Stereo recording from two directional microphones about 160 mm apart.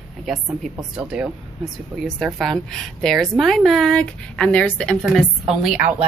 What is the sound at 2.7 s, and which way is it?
A woman's voice, 5° left (ahead or behind).